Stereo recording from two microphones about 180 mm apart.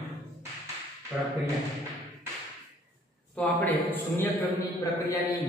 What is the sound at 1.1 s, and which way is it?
Speech, 5° right (ahead or behind).